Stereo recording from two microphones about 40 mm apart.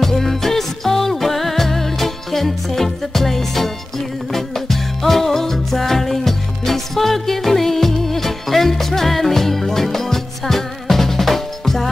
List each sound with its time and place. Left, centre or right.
0.0 s music: centre